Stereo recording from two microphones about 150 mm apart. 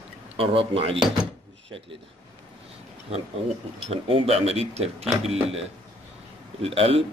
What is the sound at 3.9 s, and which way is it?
Speech, 40° right (ahead or behind).